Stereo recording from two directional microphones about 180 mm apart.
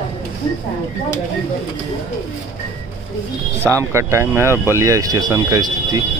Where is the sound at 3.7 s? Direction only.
15° right (ahead or behind).